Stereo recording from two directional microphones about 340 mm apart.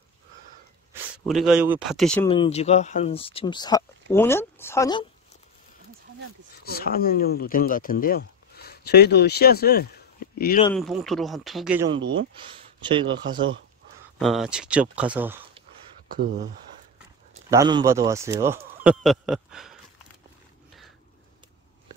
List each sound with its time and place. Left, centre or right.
1.1 s speech: centre
2.2 s speech: centre
6.6 s speech: left
10.7 s speech: centre
12.2 s speech: centre
14.1 s speech: centre
16.1 s speech: right
17.5 s speech: centre